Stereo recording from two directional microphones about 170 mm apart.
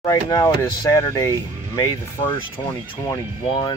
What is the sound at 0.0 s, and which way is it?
Speech, 20° left (ahead or behind).